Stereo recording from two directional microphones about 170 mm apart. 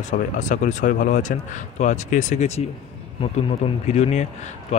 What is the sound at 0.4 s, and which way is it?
A man's voice, 45° left (ahead or behind).